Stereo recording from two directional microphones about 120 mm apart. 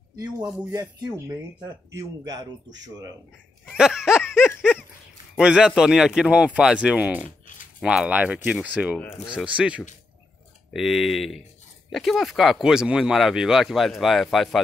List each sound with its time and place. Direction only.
0.1 s a man's voice: 35° right (ahead or behind)
3.7 s laughter: 5° right (ahead or behind)
4.6 s dog: 5° right (ahead or behind)
5.4 s speech: 5° right (ahead or behind)
7.2 s a sound: 90° left
7.8 s speech: 5° right (ahead or behind)